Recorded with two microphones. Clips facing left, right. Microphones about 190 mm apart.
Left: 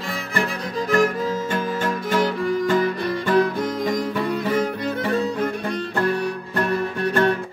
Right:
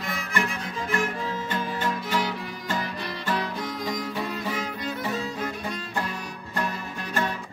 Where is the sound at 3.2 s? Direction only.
55° left (ahead or behind).